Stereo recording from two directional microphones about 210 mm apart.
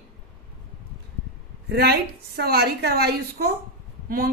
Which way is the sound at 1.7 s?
50° right (ahead or behind).